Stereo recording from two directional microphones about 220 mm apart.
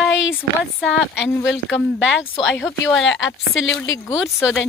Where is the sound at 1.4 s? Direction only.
60° left (ahead or behind).